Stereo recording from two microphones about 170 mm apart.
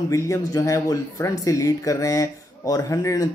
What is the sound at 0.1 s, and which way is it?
Speech, 20° left (ahead or behind).